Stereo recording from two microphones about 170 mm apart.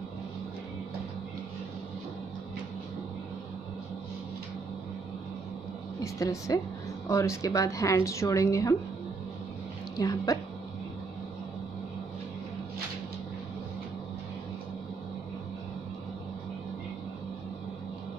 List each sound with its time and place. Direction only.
5.9 s a woman's voice: 20° left (ahead or behind)
9.9 s a woman's voice: 20° left (ahead or behind)